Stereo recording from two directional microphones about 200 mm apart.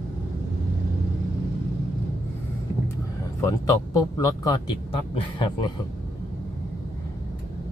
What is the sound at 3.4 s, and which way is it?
Speech, 15° left (ahead or behind).